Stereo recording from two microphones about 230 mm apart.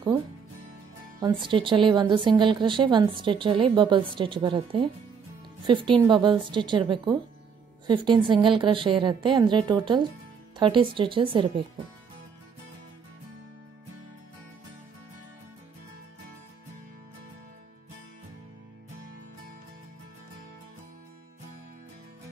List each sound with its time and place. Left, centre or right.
1.2 s a woman's voice: right